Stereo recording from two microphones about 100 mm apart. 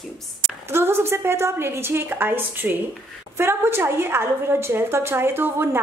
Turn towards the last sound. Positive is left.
turn(degrees=-20)  # may be behind; listen again after turning